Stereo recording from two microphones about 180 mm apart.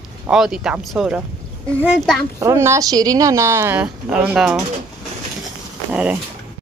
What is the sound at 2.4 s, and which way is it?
Speech, 15° right (ahead or behind).